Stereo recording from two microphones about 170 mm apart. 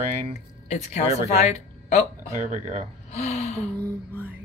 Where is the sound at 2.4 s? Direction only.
45° right (ahead or behind).